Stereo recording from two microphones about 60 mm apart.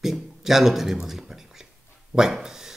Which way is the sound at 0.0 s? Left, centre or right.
Centre.